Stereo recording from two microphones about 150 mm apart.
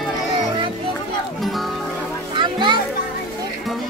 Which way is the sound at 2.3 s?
30° right (ahead or behind).